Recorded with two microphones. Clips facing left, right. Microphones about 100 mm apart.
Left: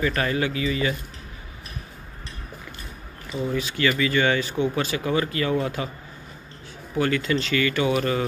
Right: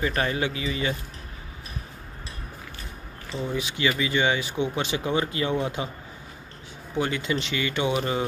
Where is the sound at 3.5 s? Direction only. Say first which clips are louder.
Left 2 dB; 20° right (ahead or behind).